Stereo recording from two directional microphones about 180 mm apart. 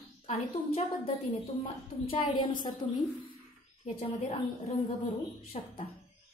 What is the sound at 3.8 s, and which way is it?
A woman's voice, 35° left (ahead or behind).